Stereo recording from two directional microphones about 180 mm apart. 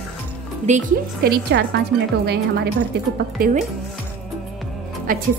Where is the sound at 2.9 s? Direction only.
65° right (ahead or behind).